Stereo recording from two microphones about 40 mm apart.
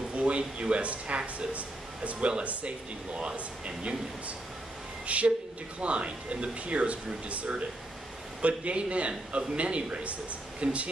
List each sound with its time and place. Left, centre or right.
0.1 s speech: right
5.0 s speech: right